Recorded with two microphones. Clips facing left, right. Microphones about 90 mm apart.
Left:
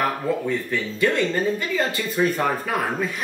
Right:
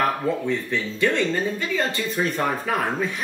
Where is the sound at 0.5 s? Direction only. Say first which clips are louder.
Even; 5° left (ahead or behind).